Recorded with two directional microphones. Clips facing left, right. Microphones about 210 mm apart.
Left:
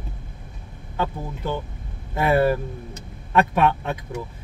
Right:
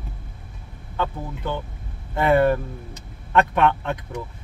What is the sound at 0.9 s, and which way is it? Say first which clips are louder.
Speech: even; 10° left (ahead or behind).